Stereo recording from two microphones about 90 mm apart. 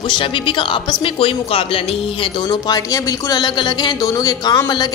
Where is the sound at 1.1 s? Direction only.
90° left.